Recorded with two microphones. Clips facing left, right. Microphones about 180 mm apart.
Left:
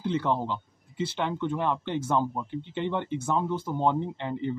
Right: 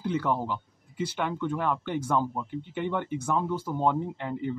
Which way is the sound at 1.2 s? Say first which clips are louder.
Left 1 dB; 20° left (ahead or behind).